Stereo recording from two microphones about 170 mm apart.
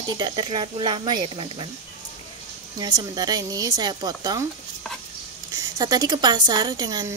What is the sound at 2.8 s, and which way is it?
Speech, 25° right (ahead or behind).